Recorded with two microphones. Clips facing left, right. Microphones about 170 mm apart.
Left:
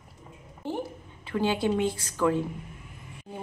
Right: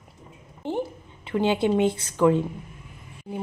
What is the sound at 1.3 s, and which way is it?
Speech, 20° right (ahead or behind).